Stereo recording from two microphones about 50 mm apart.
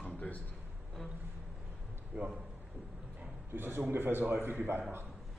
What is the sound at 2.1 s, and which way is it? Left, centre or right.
Speech, right.